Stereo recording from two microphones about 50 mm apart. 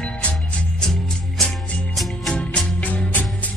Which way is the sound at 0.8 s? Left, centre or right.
Centre.